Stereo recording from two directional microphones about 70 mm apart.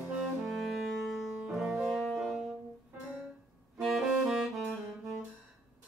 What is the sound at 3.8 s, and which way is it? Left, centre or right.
Music, centre.